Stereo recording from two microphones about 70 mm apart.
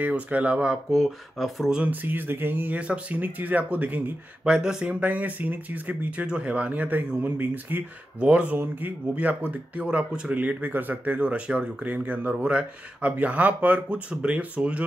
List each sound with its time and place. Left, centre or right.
0.0 s speech: right
0.9 s speech: centre
1.7 s speech: right
4.5 s speech: centre
5.0 s speech: right
8.3 s speech: centre
8.5 s speech: right